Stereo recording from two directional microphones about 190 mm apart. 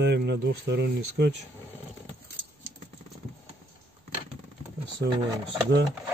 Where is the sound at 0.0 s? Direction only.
65° right (ahead or behind).